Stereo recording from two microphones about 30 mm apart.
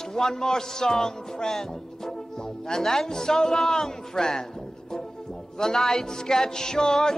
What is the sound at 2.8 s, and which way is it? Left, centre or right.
Speech, centre.